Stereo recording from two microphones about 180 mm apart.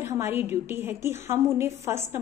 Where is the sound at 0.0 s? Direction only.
10° right (ahead or behind).